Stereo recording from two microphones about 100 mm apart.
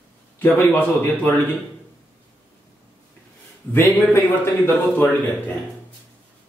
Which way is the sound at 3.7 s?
20° left (ahead or behind).